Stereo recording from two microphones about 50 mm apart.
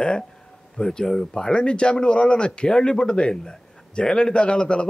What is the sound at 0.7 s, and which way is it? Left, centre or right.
A man's voice, centre.